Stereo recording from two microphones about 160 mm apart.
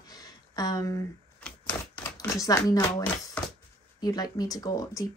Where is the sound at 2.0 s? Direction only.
20° left (ahead or behind).